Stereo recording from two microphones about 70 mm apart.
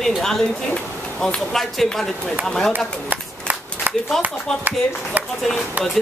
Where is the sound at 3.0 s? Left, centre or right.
Right.